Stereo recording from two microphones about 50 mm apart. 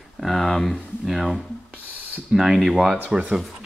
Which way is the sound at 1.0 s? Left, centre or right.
Centre.